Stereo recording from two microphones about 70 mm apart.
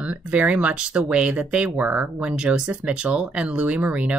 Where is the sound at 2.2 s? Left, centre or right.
Centre.